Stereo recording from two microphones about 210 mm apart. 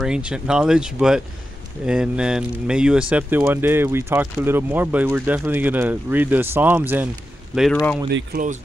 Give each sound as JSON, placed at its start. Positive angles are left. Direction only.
{"t": 0.0, "sound": "speech", "side_deg": -5}
{"t": 7.7, "sound": "speech", "side_deg": 10}
{"t": 8.1, "sound": "speech", "side_deg": -45}